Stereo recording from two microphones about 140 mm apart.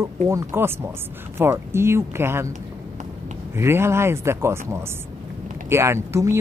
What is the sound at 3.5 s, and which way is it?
Speech, 15° right (ahead or behind).